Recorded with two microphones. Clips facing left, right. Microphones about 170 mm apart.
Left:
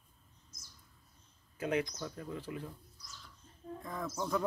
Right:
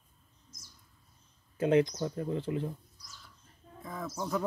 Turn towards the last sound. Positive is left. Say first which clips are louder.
# right 1 dB
turn(degrees=-10)  # may be behind; listen again after turning